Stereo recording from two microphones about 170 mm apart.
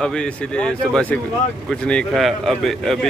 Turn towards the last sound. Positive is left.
turn(degrees=0)  # may be behind; listen again after turning